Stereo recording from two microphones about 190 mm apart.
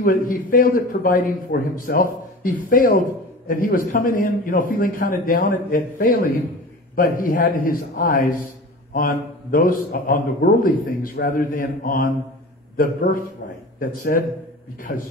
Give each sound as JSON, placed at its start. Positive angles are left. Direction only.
{"t": 0.0, "sound": "a man's voice", "side_deg": 50}